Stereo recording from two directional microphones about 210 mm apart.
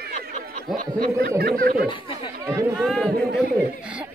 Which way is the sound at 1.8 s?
25° left (ahead or behind).